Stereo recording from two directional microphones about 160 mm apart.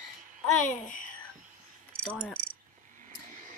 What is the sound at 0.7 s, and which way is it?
Speech, 50° left (ahead or behind).